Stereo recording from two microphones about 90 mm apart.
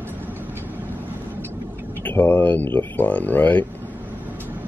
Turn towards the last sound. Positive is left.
turn(degrees=20)  # may be behind; listen again after turning